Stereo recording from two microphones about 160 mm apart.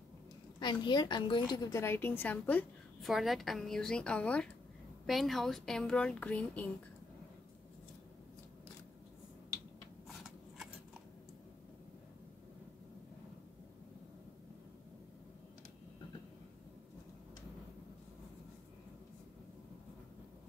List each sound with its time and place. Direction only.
0.6 s a woman's voice: 30° left (ahead or behind); by 2.6 s 10° left (ahead or behind)
3.0 s a woman's voice: centre (ahead or behind)